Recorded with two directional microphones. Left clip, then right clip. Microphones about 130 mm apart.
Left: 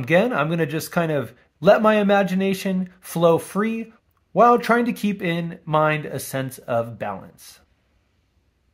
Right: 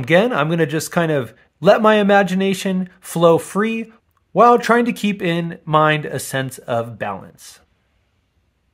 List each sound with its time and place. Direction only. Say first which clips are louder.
0.0 s speech: right 4 dB; 30° right (ahead or behind)